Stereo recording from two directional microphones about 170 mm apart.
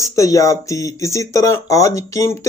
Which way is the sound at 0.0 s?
20° left (ahead or behind).